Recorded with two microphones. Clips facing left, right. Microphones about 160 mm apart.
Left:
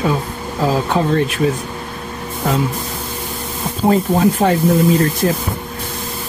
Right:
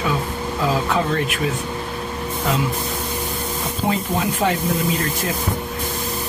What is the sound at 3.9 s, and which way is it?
Speech, 40° left (ahead or behind).